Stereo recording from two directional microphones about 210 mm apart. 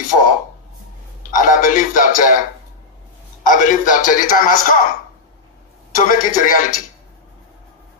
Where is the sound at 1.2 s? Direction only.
40° left (ahead or behind).